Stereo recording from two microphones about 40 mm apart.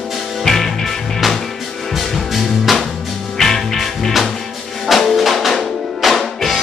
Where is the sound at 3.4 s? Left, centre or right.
Centre.